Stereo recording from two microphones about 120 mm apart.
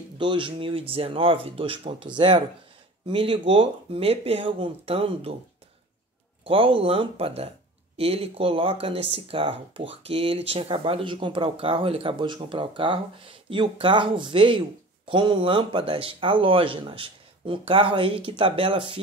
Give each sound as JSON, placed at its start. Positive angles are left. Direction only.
{"t": 0.2, "sound": "speech", "side_deg": -40}
{"t": 6.4, "sound": "speech", "side_deg": -50}